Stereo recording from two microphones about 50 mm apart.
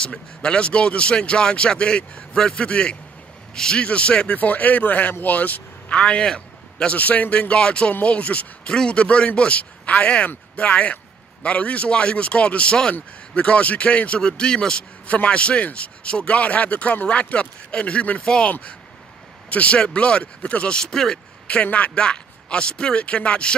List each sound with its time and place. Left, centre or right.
0.0 s speech: centre
5.9 s a man's voice: left
7.0 s speech: left
7.3 s speech: centre
18.2 s speech: centre
18.5 s speech: left
20.7 s speech: centre
21.7 s speech: left